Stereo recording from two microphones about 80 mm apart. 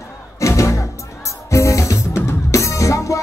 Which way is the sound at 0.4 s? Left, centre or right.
Left.